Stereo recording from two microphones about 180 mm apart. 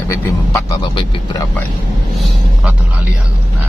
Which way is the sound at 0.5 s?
25° left (ahead or behind).